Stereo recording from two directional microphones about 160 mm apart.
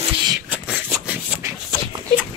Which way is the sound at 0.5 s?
5° right (ahead or behind).